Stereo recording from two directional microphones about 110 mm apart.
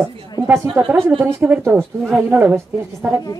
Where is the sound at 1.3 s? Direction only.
20° right (ahead or behind).